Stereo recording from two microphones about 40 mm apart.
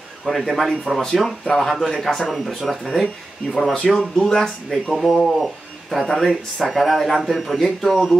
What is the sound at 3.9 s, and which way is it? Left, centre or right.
Speech, centre.